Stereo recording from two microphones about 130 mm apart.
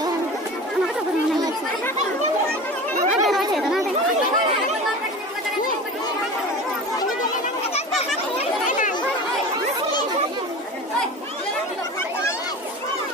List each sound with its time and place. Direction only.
3.1 s chatter: centre (ahead or behind)
8.6 s chatter: 85° left